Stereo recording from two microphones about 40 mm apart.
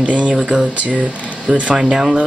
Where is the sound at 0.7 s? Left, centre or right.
Right.